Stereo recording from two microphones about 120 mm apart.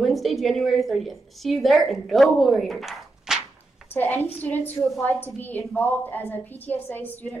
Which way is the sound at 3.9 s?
15° left (ahead or behind).